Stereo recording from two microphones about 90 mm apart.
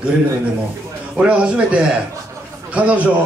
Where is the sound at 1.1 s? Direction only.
10° right (ahead or behind).